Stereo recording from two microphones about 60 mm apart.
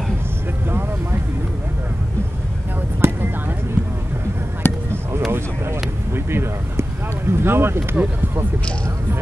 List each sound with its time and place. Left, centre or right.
0.7 s vehicle: right
3.0 s vehicle: right
4.6 s basketball bounce: left
5.3 s a sound: right